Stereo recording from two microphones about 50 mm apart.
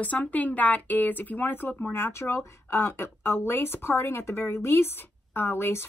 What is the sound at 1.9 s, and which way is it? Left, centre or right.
A woman's voice, left.